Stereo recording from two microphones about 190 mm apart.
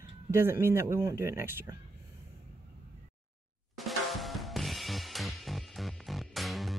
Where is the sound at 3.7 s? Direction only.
Centre (ahead or behind).